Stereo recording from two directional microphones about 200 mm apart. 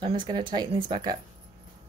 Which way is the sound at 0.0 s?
25° right (ahead or behind).